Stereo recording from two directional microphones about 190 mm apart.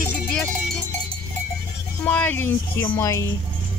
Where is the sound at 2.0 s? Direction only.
10° left (ahead or behind).